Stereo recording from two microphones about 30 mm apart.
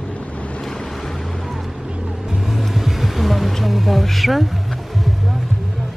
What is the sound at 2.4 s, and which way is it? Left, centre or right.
Vehicle, centre.